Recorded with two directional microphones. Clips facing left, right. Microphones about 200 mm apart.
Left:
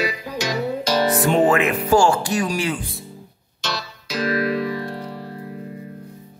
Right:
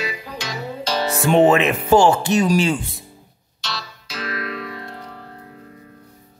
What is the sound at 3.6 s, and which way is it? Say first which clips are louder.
Music: left 4 dB; 40° left (ahead or behind).